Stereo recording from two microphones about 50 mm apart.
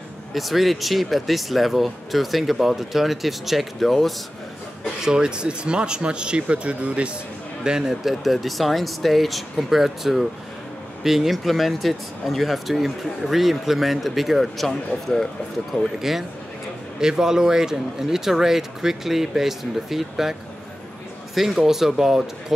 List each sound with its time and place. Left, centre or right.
0.3 s speech: centre
5.0 s speech: centre
7.6 s speech: centre
16.0 s speech: centre
21.4 s speech: centre